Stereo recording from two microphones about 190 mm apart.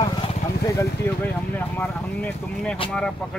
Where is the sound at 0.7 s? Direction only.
10° left (ahead or behind).